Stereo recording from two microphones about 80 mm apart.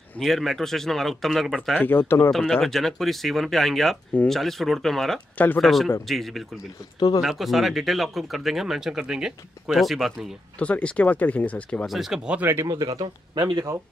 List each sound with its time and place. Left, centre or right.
0.2 s speech: centre
1.8 s speech: left
2.3 s speech: centre
10.6 s speech: centre
11.8 s speech: centre
12.4 s speech: right
12.6 s speech: right